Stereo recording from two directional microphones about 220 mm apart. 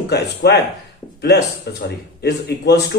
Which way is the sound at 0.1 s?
50° left (ahead or behind).